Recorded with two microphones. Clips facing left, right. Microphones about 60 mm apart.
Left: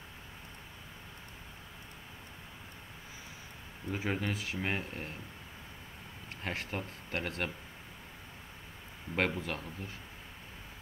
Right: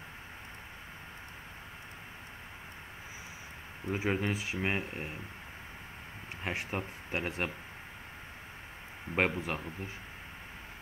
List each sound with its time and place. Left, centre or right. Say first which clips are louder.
3.9 s speech: right 3 dB; centre
6.4 s speech: right 2 dB; centre
9.1 s speech: right 2 dB; centre